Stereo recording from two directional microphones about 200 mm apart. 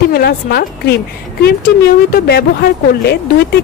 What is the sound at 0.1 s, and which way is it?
Speech, 50° left (ahead or behind).